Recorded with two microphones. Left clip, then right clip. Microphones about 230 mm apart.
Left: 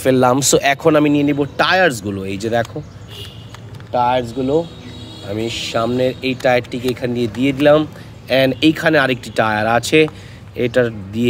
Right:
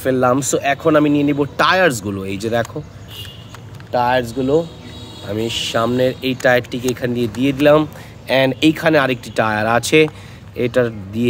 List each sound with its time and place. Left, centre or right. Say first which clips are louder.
0.0 s speech: left 2 dB; centre
0.9 s speech: even; centre
3.9 s speech: even; centre